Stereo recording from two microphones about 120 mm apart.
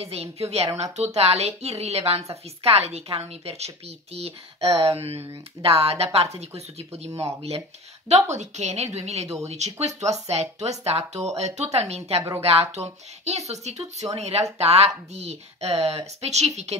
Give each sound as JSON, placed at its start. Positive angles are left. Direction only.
{"t": 0.0, "sound": "speech", "side_deg": -55}
{"t": 7.1, "sound": "speech", "side_deg": -25}
{"t": 8.1, "sound": "speech", "side_deg": -70}